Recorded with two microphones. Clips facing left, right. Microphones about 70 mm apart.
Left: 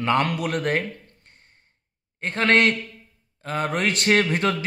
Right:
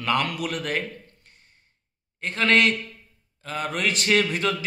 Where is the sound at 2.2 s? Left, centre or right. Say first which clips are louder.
Left 1 dB; left.